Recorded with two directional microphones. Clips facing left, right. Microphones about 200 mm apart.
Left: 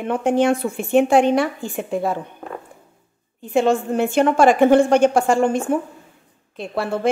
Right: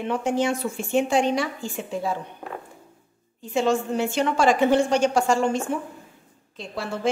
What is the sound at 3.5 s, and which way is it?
A woman's voice, 55° left (ahead or behind).